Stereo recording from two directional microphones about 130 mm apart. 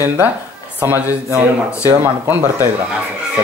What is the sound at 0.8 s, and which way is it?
Speech, 15° right (ahead or behind).